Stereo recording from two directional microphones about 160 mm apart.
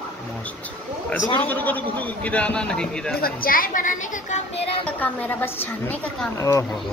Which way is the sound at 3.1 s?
70° left (ahead or behind).